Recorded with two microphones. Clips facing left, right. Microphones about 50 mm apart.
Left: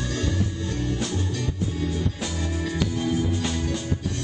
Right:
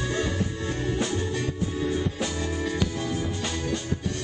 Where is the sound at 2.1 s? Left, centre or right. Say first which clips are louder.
Right 1 dB; centre.